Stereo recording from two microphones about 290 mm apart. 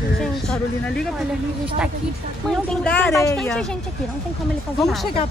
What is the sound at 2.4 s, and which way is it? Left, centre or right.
A woman's voice, centre.